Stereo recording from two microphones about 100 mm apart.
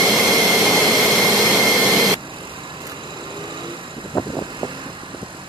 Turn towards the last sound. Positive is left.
turn(degrees=35)  # may be behind; listen again after turning